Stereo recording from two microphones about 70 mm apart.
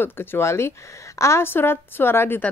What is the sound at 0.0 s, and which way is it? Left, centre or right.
Speech, left.